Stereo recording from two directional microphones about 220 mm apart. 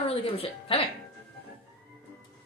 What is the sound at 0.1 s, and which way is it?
Speech, 25° left (ahead or behind).